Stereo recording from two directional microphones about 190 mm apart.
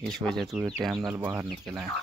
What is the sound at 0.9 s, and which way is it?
Speech, 20° right (ahead or behind).